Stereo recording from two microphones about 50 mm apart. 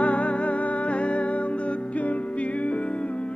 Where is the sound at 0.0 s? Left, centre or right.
Left.